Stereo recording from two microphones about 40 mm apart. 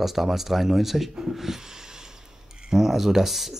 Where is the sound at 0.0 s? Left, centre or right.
Centre.